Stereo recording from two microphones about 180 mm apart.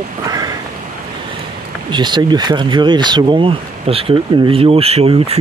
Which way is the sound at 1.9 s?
25° right (ahead or behind).